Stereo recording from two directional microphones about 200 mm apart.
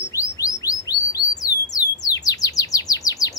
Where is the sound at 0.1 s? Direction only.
15° left (ahead or behind).